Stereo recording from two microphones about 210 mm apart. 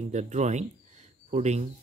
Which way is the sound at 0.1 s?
35° right (ahead or behind).